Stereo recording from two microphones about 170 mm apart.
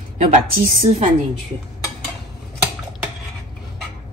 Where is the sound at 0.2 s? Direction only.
50° right (ahead or behind).